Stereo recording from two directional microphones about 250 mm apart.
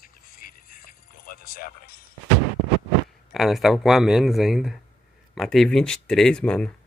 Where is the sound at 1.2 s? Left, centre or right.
Left.